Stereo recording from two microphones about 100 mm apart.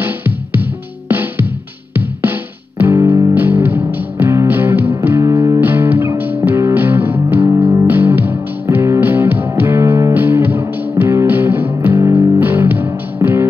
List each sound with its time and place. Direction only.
0.0 s music: 20° right (ahead or behind)
2.8 s music: 25° right (ahead or behind)
3.3 s music: 20° right (ahead or behind)